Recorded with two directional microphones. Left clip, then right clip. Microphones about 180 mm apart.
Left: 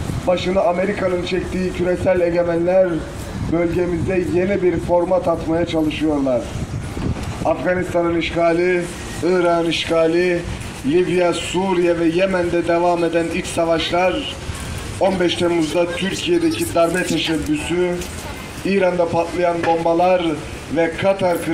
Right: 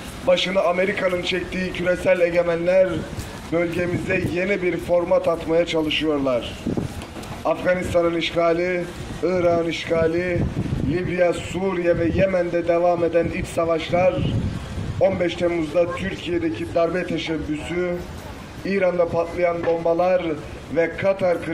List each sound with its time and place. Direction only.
0.3 s a man's voice: centre (ahead or behind)
7.4 s a man's voice: centre (ahead or behind)